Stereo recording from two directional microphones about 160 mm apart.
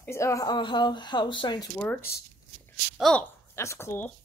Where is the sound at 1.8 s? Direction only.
10° left (ahead or behind).